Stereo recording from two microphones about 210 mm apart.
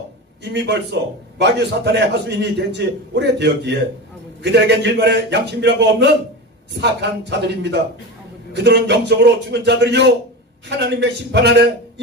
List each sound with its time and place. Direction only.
0.4 s a man's voice: 55° right (ahead or behind)